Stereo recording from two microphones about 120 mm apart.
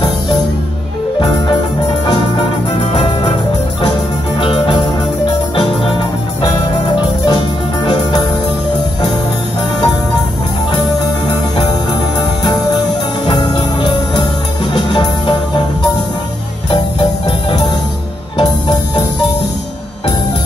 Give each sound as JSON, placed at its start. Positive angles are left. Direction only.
{"t": 1.2, "sound": "music", "side_deg": 45}
{"t": 2.9, "sound": "music", "side_deg": 50}
{"t": 4.4, "sound": "music", "side_deg": 45}
{"t": 7.0, "sound": "music", "side_deg": 40}
{"t": 10.8, "sound": "music", "side_deg": 40}